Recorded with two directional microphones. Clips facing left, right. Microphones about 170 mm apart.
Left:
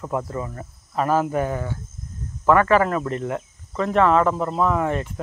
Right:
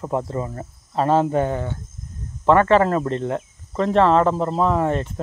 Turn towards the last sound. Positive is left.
turn(degrees=-30)  # may be behind; listen again after turning